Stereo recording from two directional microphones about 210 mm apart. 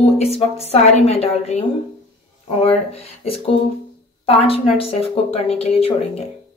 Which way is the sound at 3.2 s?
25° left (ahead or behind).